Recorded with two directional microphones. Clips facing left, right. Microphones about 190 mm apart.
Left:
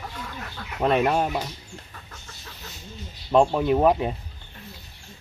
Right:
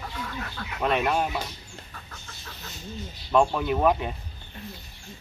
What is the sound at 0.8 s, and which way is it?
Speech, 35° left (ahead or behind).